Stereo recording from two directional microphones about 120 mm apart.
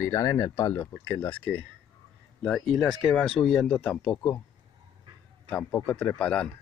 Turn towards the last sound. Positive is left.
turn(degrees=10)  # may be behind; listen again after turning